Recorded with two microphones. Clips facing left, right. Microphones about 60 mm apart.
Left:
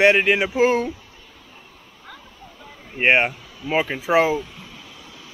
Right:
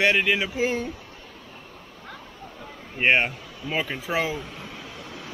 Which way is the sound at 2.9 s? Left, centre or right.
Left.